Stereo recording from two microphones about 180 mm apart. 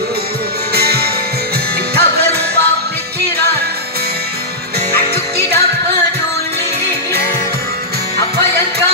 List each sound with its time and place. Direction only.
0.7 s music: 60° right (ahead or behind)
4.9 s music: 65° right (ahead or behind)